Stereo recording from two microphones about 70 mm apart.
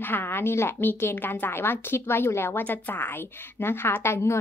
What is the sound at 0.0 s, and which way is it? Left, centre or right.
A woman's voice, left.